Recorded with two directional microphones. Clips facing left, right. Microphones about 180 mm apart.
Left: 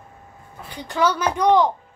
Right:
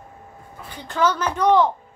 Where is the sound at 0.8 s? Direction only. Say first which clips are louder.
Even; 10° left (ahead or behind).